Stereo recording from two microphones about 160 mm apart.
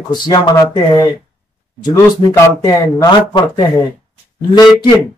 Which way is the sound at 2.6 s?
20° left (ahead or behind).